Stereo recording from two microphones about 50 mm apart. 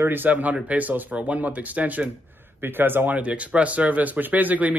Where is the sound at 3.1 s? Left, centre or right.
Right.